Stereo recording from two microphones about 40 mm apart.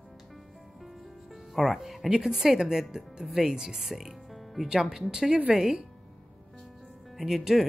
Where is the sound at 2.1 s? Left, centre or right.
Centre.